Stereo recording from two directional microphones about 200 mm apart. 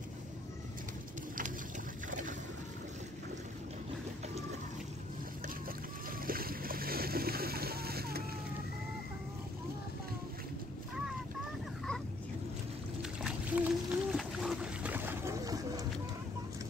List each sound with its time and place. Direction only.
2.0 s boat: 40° right (ahead or behind)
6.2 s splash: 45° right (ahead or behind)
13.2 s a sound: 5° right (ahead or behind)